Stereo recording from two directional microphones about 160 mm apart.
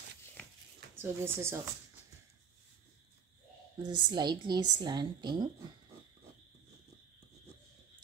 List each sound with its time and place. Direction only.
0.9 s speech: 15° right (ahead or behind)
3.8 s a woman's voice: 30° right (ahead or behind)